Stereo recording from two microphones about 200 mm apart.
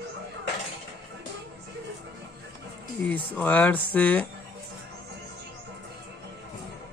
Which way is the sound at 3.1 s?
10° left (ahead or behind).